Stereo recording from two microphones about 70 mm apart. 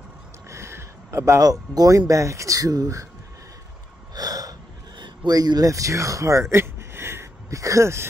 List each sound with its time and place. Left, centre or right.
0.5 s a sound: right
1.4 s speech: right
4.1 s gasp: right